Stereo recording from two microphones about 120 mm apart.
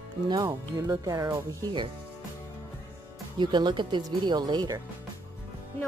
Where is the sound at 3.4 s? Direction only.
40° right (ahead or behind).